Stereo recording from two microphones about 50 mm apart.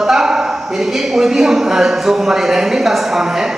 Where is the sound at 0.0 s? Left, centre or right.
Centre.